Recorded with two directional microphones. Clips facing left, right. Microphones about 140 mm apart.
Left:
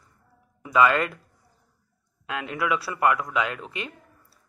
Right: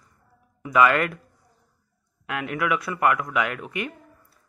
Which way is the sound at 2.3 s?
25° left (ahead or behind).